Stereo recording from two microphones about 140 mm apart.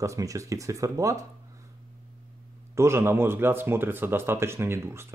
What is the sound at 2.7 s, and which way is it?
Speech, 20° right (ahead or behind).